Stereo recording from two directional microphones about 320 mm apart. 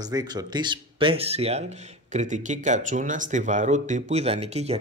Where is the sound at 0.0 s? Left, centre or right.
Centre.